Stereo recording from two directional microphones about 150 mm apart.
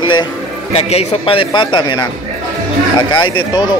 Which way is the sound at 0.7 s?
40° left (ahead or behind).